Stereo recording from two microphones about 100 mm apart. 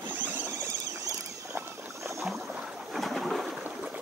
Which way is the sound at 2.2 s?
Centre (ahead or behind).